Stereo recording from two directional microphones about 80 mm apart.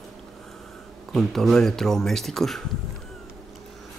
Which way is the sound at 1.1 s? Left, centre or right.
Centre.